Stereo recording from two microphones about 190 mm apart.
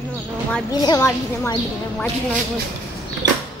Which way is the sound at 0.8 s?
15° left (ahead or behind).